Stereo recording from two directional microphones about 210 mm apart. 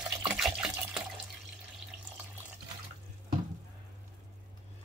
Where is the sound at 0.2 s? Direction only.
5° right (ahead or behind).